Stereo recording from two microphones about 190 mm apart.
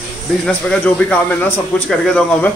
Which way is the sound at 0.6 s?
5° left (ahead or behind).